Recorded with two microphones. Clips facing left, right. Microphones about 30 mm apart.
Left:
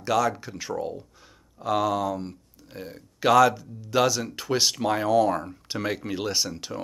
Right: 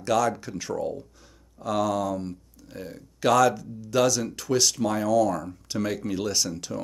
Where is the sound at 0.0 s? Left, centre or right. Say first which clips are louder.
Even; centre.